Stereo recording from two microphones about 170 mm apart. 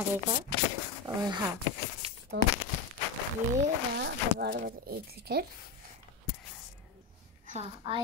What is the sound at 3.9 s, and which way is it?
Speech, 75° right (ahead or behind).